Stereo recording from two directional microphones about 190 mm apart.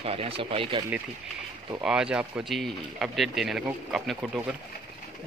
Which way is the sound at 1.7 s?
5° right (ahead or behind).